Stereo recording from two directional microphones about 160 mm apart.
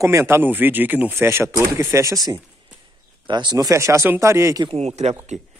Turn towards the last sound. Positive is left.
turn(degrees=-45)  # may be behind; listen again after turning